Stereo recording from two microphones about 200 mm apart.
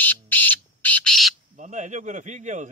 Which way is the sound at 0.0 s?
10° left (ahead or behind).